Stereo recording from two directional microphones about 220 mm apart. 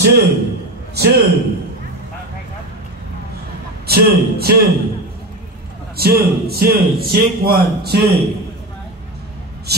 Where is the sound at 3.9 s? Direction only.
45° right (ahead or behind).